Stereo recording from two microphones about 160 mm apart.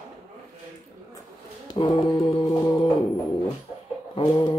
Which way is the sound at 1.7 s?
35° left (ahead or behind).